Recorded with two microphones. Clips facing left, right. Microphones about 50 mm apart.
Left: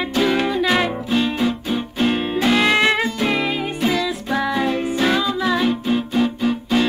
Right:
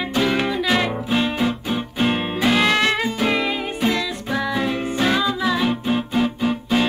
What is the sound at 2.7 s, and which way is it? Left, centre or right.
Music, centre.